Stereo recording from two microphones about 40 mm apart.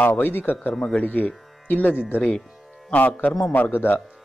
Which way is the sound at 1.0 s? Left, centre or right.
Left.